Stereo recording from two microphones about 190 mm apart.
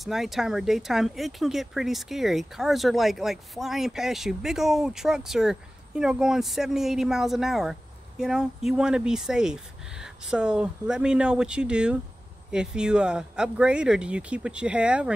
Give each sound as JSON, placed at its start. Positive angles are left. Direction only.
{"t": 0.0, "sound": "speech", "side_deg": 0}